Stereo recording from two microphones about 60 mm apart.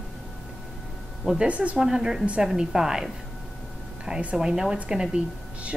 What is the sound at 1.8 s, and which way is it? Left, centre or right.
A woman's voice, centre.